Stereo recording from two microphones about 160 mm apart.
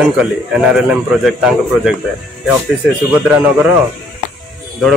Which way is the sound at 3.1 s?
10° right (ahead or behind).